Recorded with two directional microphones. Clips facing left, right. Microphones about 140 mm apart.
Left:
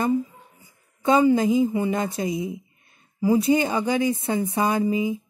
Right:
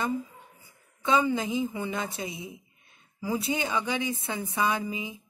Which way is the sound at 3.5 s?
45° left (ahead or behind).